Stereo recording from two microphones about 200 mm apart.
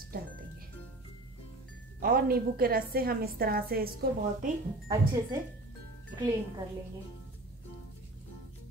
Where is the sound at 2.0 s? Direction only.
45° right (ahead or behind).